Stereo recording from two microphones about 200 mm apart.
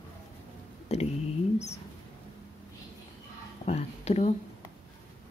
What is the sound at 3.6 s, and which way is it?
Speech, 35° left (ahead or behind).